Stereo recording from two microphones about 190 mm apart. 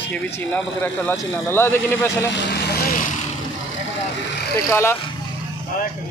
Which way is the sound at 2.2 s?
70° left (ahead or behind).